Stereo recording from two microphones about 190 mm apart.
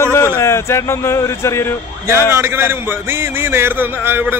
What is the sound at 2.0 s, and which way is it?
A man's voice, 15° right (ahead or behind).